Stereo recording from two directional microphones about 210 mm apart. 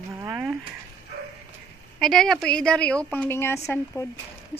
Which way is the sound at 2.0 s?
Centre (ahead or behind).